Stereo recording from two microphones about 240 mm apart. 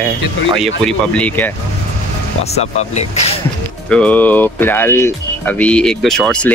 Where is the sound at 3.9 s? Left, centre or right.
Centre.